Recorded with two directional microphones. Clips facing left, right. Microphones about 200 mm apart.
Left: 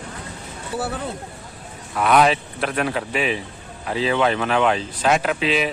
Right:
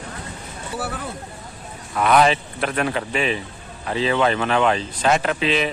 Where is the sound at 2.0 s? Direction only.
Centre (ahead or behind).